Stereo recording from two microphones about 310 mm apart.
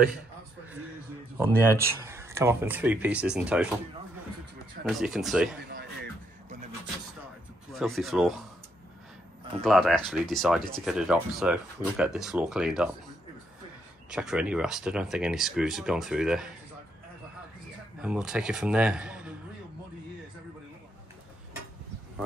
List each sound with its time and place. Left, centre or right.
1.8 s speech: centre
4.8 s speech: centre
7.7 s speech: centre
9.6 s speech: centre
14.1 s speech: centre
18.0 s speech: centre